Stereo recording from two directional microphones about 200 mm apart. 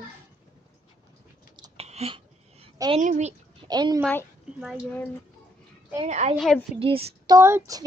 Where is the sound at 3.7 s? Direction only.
20° right (ahead or behind).